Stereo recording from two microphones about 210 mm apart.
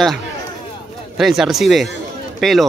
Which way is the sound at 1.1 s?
Centre (ahead or behind).